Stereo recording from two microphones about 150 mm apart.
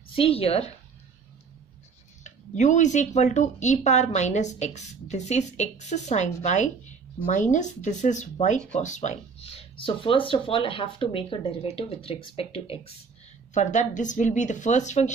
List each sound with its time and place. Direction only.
0.1 s speech: 40° left (ahead or behind)
2.2 s speech: 55° left (ahead or behind); by 12.9 s 40° left (ahead or behind)
13.5 s speech: 55° left (ahead or behind)